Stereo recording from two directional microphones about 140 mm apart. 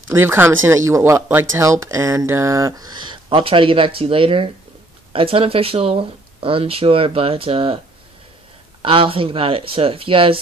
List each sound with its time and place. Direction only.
0.1 s speech: 15° right (ahead or behind); by 7.8 s 40° right (ahead or behind)
8.8 s speech: 40° right (ahead or behind)